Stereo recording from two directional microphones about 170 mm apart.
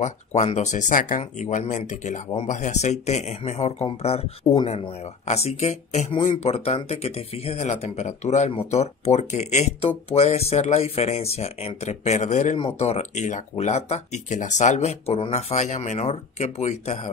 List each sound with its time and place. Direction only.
0.0 s speech: 40° left (ahead or behind)
15.5 s speech: 45° left (ahead or behind)